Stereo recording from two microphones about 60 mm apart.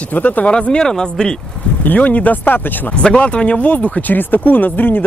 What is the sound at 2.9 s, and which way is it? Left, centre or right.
Speech, centre.